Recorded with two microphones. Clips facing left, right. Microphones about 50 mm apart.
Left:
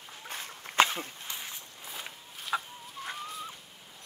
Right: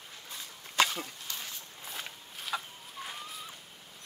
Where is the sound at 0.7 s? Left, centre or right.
Left.